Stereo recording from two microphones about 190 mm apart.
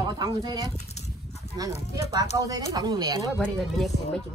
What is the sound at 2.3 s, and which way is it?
Speech, 20° right (ahead or behind).